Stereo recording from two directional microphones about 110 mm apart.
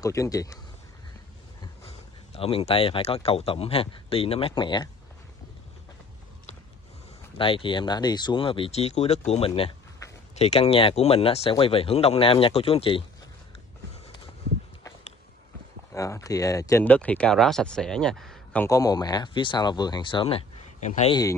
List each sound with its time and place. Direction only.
0.0 s speech: 30° left (ahead or behind)
1.9 s speech: 65° left (ahead or behind)
7.3 s speech: 50° left (ahead or behind); by 9.2 s 80° left
10.3 s speech: 75° left (ahead or behind); by 13.0 s 55° left (ahead or behind)
15.9 s speech: 30° left (ahead or behind)
16.8 s speech: 15° left (ahead or behind)
18.7 s speech: 35° left (ahead or behind); by 21.1 s 70° left (ahead or behind)
21.1 s speech: 35° left (ahead or behind)